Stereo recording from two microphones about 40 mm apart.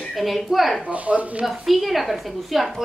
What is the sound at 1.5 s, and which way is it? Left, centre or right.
Speech, centre.